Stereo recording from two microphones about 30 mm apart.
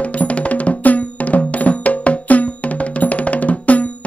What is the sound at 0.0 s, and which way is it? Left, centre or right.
Music, left.